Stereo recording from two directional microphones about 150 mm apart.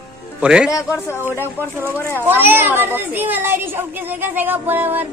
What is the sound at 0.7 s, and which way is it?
Speech, 20° left (ahead or behind).